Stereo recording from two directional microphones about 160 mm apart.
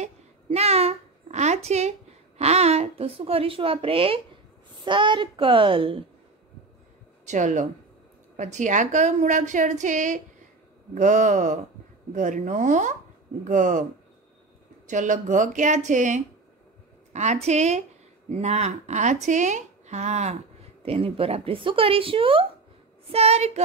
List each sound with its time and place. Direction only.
0.0 s a sound: 40° right (ahead or behind)
4.8 s a woman's voice: 30° right (ahead or behind)
7.2 s a woman's voice: 50° right (ahead or behind)
14.9 s a woman's voice: 50° right (ahead or behind)